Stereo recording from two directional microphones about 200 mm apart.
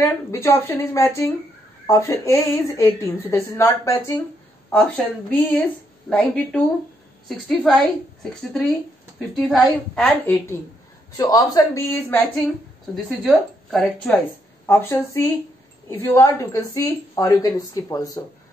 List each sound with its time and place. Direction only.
0.0 s a woman's voice: 15° left (ahead or behind)